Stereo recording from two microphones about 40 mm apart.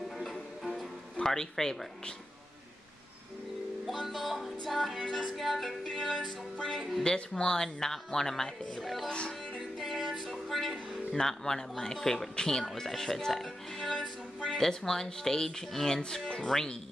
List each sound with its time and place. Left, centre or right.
0.2 s music: centre
1.2 s speech: centre
3.8 s music: centre
5.0 s speech: centre
6.7 s music: centre
7.2 s speech: centre
9.8 s music: centre
11.1 s speech: centre